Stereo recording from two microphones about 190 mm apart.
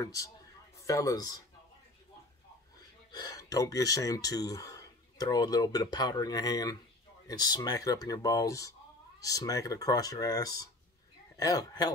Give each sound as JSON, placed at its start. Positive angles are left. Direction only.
{"t": 0.0, "sound": "a man's voice", "side_deg": 15}
{"t": 3.1, "sound": "speech", "side_deg": 20}